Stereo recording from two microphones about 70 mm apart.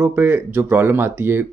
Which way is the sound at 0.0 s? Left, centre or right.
Right.